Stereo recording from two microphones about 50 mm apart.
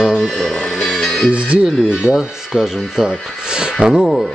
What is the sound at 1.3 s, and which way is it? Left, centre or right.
Speech, right.